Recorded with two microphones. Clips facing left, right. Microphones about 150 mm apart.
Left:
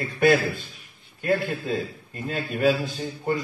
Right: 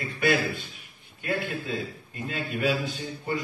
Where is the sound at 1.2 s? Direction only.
45° left (ahead or behind).